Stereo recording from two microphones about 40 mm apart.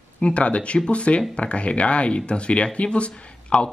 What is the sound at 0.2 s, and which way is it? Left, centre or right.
Speech, left.